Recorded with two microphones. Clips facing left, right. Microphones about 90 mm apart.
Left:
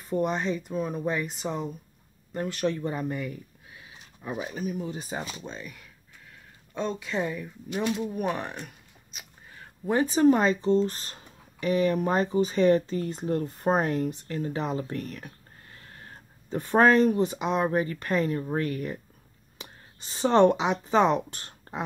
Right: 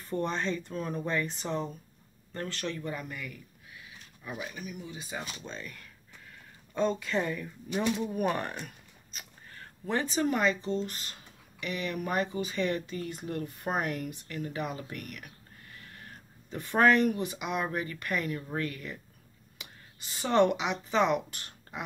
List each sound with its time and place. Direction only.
0.1 s speech: 15° left (ahead or behind); by 5.2 s 35° left (ahead or behind)
5.4 s speech: 10° left (ahead or behind)
8.1 s a sound: centre (ahead or behind)
10.1 s speech: 25° left (ahead or behind)